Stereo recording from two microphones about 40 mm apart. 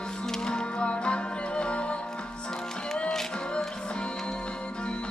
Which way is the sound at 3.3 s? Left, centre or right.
Left.